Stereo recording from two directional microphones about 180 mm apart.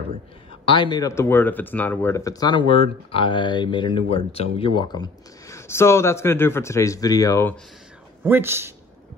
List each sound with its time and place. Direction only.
0.7 s speech: 25° left (ahead or behind)
8.2 s speech: 10° right (ahead or behind)